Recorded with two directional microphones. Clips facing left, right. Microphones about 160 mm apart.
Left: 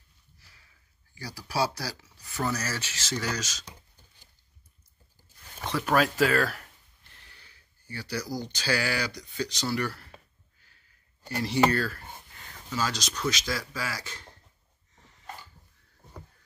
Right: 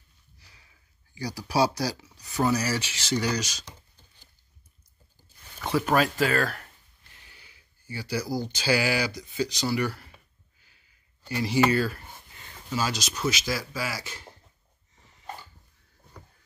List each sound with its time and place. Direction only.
0.4 s a sound: 20° right (ahead or behind)
1.1 s speech: 15° right (ahead or behind)
5.7 s speech: 5° right (ahead or behind)
11.4 s speech: 5° right (ahead or behind)